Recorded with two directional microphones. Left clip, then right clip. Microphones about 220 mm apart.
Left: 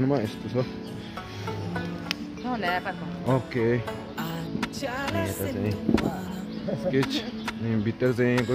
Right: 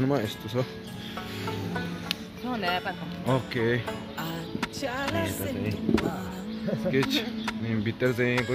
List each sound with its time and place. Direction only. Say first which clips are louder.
0.0 s speech: left 1 dB; centre (ahead or behind)
3.3 s music: left 1 dB; centre (ahead or behind)
5.4 s speech: left 2 dB; centre (ahead or behind)